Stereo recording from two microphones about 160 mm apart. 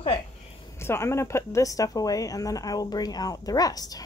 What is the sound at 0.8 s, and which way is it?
A woman's voice, 15° left (ahead or behind).